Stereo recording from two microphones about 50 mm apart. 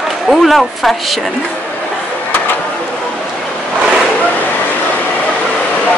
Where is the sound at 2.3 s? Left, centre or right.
Left.